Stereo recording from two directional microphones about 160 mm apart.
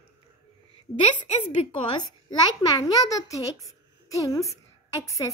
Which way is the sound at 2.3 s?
25° left (ahead or behind).